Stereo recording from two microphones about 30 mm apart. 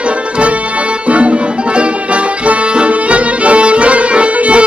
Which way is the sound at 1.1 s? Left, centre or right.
Right.